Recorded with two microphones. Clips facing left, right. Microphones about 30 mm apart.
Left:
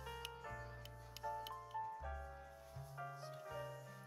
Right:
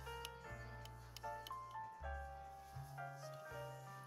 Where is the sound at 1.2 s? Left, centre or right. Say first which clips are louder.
Left 3 dB; left.